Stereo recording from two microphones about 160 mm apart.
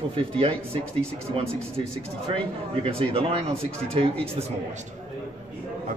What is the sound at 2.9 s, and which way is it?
Speech, 35° right (ahead or behind).